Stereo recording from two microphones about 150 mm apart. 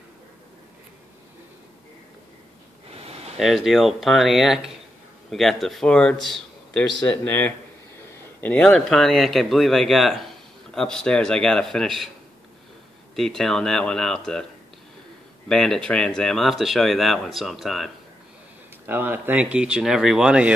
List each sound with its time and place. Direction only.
2.9 s a sound: 45° right (ahead or behind)
3.3 s a man's voice: centre (ahead or behind)
13.1 s speech: centre (ahead or behind)
15.4 s speech: 5° left (ahead or behind)
18.9 s speech: 15° right (ahead or behind)